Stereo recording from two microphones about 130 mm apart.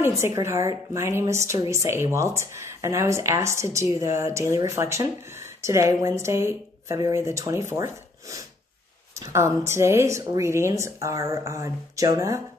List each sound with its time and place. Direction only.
0.0 s speech: 20° right (ahead or behind)